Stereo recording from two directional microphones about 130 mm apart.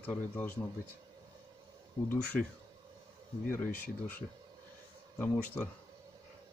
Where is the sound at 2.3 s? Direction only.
5° left (ahead or behind).